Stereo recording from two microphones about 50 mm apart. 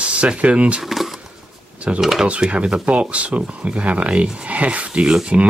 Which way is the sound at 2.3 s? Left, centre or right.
Right.